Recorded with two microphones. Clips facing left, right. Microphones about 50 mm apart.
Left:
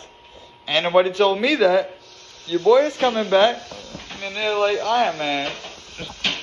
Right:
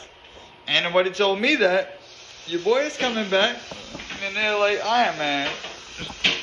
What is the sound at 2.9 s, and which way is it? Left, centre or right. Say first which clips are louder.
Speech: left 5 dB; centre.